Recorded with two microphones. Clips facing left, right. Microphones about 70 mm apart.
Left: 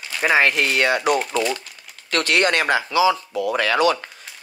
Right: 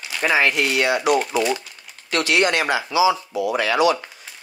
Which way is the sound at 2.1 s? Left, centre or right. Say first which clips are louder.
Even; left.